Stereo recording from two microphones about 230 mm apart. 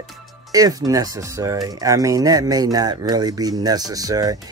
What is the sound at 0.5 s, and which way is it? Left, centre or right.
Speech, centre.